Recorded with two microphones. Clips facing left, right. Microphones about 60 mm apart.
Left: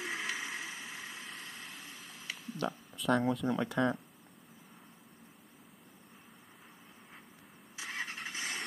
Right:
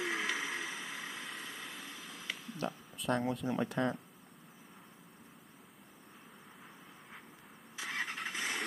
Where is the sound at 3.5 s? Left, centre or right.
Left.